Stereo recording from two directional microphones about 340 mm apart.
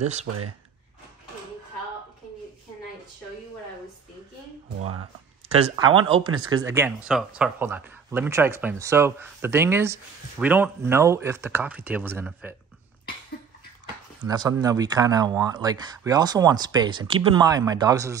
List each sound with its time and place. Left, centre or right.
5.5 s speech: centre
14.2 s speech: centre